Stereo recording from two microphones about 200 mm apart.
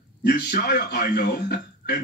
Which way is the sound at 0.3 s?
55° left (ahead or behind).